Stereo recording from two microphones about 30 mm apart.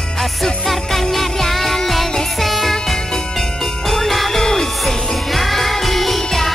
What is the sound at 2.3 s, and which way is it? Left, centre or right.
Music, centre.